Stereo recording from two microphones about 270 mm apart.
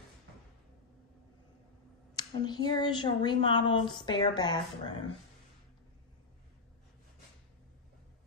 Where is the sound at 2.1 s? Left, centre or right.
Centre.